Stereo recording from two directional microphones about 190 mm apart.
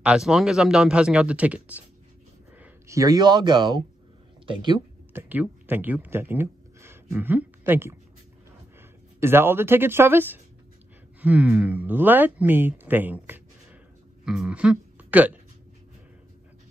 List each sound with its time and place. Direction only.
0.0 s speech: 5° right (ahead or behind); by 4.8 s 25° right (ahead or behind)
5.1 s speech: 10° right (ahead or behind)
9.2 s speech: 10° right (ahead or behind)